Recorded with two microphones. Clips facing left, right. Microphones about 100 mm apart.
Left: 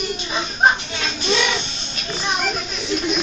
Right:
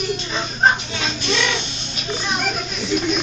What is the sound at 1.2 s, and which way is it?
Speech, 20° left (ahead or behind).